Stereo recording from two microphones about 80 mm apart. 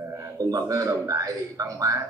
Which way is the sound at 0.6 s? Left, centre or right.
Right.